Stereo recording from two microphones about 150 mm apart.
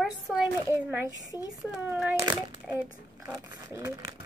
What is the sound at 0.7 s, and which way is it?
Speech, 15° right (ahead or behind).